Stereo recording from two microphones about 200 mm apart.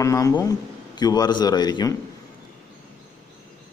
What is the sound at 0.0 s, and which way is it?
A man's voice, 15° left (ahead or behind).